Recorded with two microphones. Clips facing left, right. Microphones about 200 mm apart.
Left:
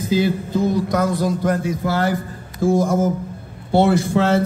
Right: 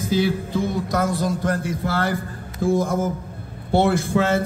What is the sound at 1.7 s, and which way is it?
Speech, 50° right (ahead or behind).